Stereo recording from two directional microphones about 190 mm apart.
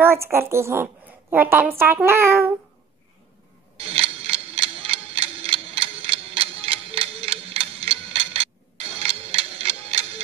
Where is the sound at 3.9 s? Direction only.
30° right (ahead or behind).